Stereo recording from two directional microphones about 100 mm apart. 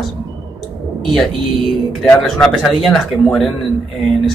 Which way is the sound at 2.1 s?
5° left (ahead or behind).